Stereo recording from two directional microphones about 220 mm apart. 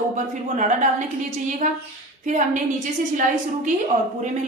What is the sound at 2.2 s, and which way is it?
A woman's voice, 35° right (ahead or behind).